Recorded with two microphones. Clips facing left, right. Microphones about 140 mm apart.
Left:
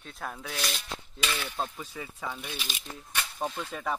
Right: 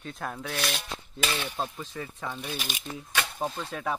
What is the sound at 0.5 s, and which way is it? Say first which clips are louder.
Speech: right 4 dB; 60° right (ahead or behind).